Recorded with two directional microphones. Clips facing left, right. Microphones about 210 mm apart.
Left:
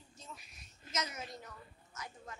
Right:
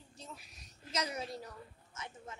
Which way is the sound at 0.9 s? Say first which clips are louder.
Right 3 dB; 35° right (ahead or behind).